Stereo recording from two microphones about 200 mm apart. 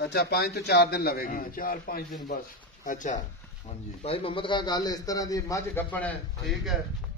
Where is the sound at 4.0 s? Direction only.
25° left (ahead or behind); by 6.1 s 10° left (ahead or behind).